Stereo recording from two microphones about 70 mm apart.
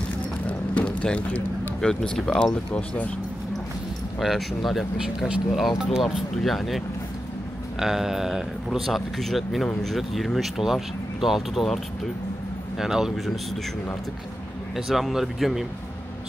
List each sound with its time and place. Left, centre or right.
0.5 s a sound: centre
1.8 s speech: centre
4.2 s speech: centre
7.8 s speech: centre
14.9 s speech: centre